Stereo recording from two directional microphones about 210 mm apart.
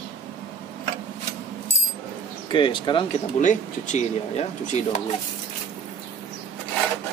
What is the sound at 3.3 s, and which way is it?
Speech, 35° left (ahead or behind).